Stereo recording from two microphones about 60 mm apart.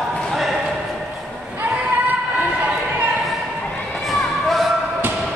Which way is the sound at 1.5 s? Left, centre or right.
Right.